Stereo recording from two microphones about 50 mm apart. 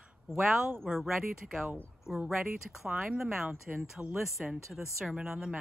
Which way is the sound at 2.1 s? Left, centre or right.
Right.